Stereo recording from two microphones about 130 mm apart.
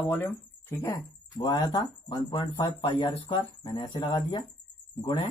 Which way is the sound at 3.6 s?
30° left (ahead or behind).